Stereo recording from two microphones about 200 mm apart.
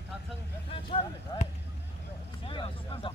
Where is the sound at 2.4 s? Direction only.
25° left (ahead or behind).